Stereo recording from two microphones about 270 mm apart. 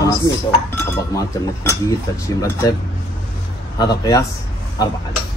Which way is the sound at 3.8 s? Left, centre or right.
Centre.